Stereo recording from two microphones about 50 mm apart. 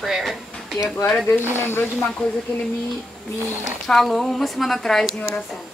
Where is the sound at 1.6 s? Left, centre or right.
Left.